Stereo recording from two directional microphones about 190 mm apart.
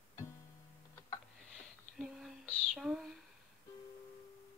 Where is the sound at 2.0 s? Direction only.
Centre (ahead or behind).